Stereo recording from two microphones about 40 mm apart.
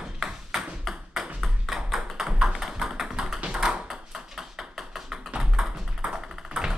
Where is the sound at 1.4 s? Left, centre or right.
Centre.